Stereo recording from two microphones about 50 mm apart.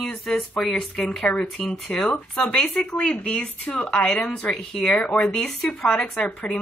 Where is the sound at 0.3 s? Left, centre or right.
Centre.